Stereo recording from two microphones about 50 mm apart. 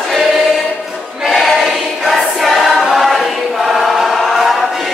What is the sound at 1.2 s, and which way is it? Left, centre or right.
Choir, centre.